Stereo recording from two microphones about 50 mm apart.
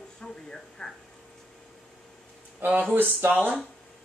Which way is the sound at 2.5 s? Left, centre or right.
Right.